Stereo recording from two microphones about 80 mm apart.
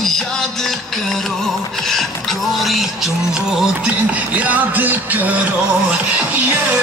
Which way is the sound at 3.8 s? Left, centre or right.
Centre.